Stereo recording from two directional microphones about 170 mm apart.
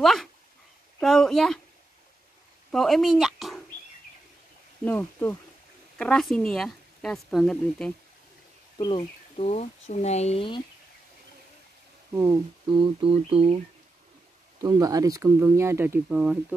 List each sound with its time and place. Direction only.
0.0 s speech: centre (ahead or behind)
2.7 s speech: centre (ahead or behind)
4.8 s speech: 10° left (ahead or behind)
8.7 s speech: 25° left (ahead or behind)
12.1 s speech: 15° right (ahead or behind)
12.6 s speech: 30° right (ahead or behind)
14.6 s speech: 20° right (ahead or behind)